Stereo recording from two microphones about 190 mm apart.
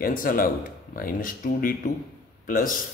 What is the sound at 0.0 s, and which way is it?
Speech, 45° left (ahead or behind).